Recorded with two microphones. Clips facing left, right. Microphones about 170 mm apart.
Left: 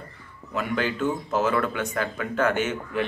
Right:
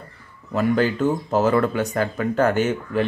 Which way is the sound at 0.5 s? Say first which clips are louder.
Right 7 dB; 40° right (ahead or behind).